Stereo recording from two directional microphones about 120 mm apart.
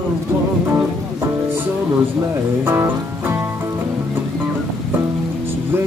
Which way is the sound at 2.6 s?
20° right (ahead or behind).